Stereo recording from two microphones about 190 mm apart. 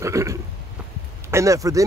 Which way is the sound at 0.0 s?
15° right (ahead or behind).